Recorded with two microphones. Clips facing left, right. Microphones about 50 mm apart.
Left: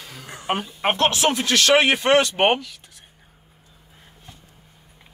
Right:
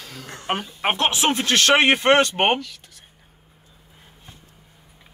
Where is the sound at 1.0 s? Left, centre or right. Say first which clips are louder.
Left 1 dB; right.